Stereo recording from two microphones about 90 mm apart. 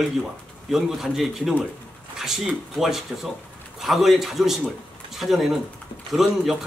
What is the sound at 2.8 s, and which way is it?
Speech, centre (ahead or behind).